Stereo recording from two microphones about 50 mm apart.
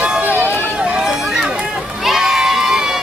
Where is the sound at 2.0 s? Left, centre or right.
Centre.